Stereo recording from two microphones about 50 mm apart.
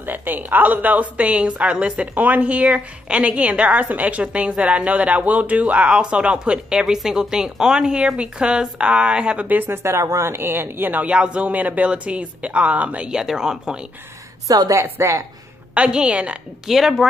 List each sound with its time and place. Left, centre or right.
0.0 s a woman's voice: right
9.8 s a woman's voice: right
10.3 s speech: right
11.1 s a woman's voice: right
13.1 s speech: centre
14.7 s a woman's voice: right
15.7 s a woman's voice: right
16.6 s speech: centre